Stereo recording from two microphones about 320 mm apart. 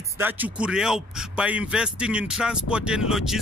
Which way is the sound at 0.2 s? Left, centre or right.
Centre.